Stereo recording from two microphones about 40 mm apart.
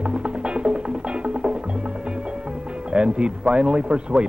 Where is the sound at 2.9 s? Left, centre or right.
Right.